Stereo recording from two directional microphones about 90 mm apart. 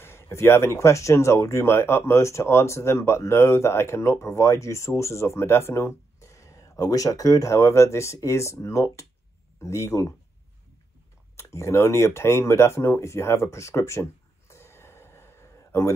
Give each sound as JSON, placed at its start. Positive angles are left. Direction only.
{"t": 0.0, "sound": "speech", "side_deg": 30}
{"t": 11.3, "sound": "speech", "side_deg": 30}
{"t": 14.5, "sound": "a sound", "side_deg": 30}